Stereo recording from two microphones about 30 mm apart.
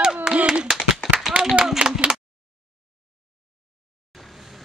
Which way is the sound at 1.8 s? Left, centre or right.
Right.